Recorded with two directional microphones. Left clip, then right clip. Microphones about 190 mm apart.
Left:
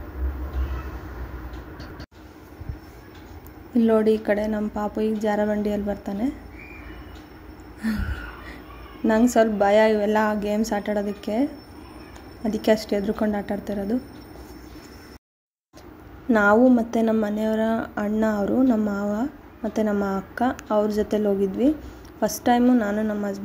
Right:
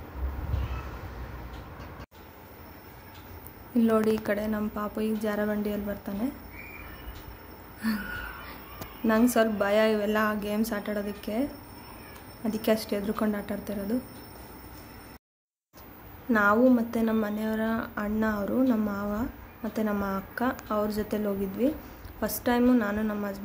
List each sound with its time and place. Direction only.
3.7 s a woman's voice: 20° left (ahead or behind)
9.0 s a woman's voice: 15° left (ahead or behind)
12.4 s a woman's voice: 15° left (ahead or behind)
16.3 s a woman's voice: 20° left (ahead or behind)